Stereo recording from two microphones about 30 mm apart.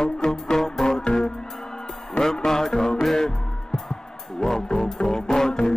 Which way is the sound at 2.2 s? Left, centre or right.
Centre.